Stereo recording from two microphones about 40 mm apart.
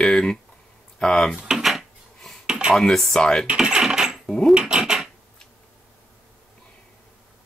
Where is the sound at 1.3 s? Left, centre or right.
Centre.